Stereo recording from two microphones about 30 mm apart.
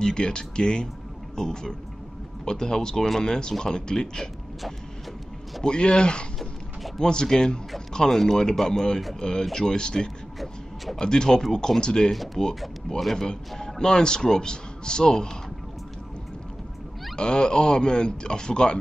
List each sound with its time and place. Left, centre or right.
0.0 s speech: left
5.6 s speech: left
17.2 s speech: left